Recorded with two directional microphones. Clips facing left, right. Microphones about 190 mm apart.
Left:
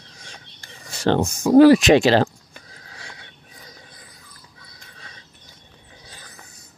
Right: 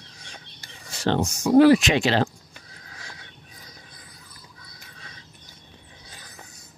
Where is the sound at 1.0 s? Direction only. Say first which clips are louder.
Left 4 dB; 55° left (ahead or behind).